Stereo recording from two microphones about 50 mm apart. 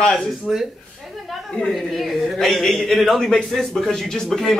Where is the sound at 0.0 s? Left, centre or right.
Left.